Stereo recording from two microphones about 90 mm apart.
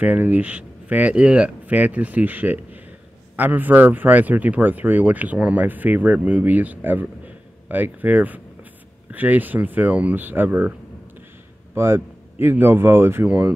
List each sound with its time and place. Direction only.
0.0 s speech: 20° right (ahead or behind)
11.7 s speech: 25° right (ahead or behind)